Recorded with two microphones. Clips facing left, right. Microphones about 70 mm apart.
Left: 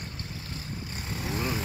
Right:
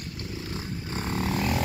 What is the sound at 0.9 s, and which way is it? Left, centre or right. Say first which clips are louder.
Vehicle: right 6 dB; right.